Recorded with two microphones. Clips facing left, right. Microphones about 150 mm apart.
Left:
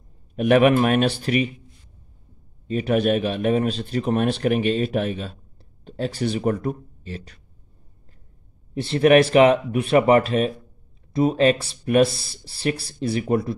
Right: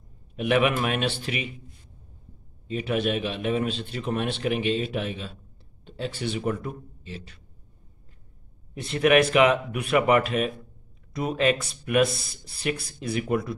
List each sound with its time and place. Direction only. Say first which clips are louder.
0.4 s a man's voice: left 7 dB; 45° left (ahead or behind)
2.7 s a man's voice: left 6 dB; 45° left (ahead or behind)
8.7 s speech: left 5 dB; 30° left (ahead or behind)